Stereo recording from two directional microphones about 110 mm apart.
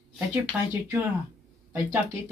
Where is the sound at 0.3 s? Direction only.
15° right (ahead or behind).